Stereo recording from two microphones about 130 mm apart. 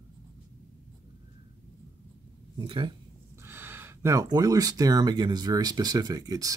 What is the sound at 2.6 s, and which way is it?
Speech, 40° right (ahead or behind).